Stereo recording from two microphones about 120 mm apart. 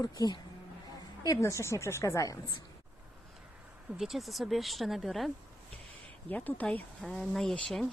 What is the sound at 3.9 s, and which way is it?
Speech, centre (ahead or behind).